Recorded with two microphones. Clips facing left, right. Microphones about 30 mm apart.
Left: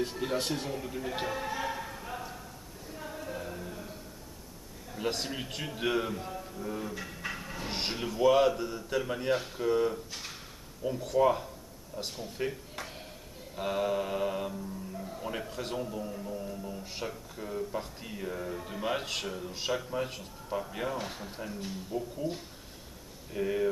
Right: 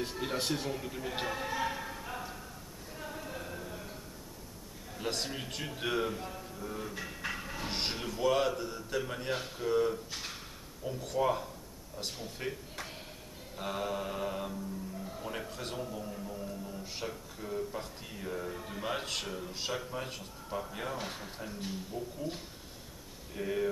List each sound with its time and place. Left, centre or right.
0.0 s speech: centre
2.9 s a sound: centre
4.9 s a man's voice: centre
13.6 s mantra: centre
15.0 s a man's voice: centre
21.9 s mantra: centre
23.3 s mantra: centre